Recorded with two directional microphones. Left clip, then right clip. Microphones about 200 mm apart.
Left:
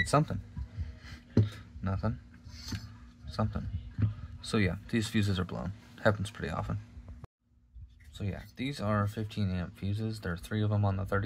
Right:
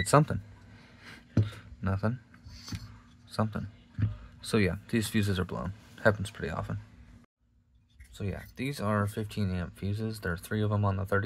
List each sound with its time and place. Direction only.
0.0 s speech: 30° right (ahead or behind)
1.1 s a sound: 25° right (ahead or behind)
3.3 s a man's voice: 25° right (ahead or behind)
8.1 s speech: 20° right (ahead or behind)